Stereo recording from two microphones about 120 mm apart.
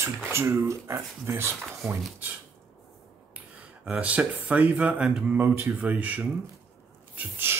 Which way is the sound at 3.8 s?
10° right (ahead or behind).